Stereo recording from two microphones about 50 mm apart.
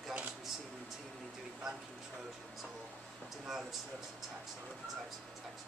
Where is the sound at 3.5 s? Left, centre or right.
Centre.